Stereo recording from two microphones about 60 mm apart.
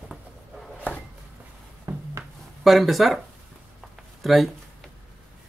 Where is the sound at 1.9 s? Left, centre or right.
Right.